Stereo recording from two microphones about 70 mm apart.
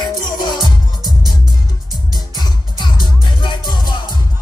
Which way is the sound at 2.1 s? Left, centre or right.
Left.